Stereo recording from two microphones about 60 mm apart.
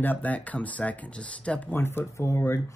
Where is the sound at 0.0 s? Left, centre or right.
Left.